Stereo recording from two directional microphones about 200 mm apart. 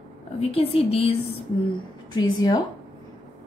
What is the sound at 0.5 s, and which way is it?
Speech, 30° left (ahead or behind).